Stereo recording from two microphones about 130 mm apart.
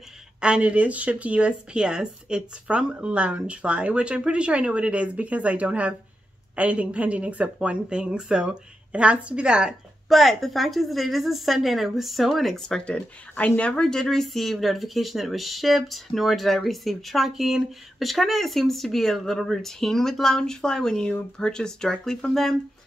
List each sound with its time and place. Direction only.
0.4 s speech: 10° right (ahead or behind)